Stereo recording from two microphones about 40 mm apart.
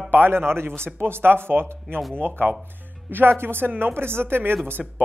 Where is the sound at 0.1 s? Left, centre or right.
Right.